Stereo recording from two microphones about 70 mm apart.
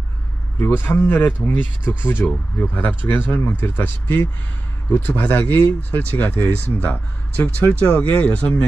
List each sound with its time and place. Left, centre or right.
0.6 s speech: left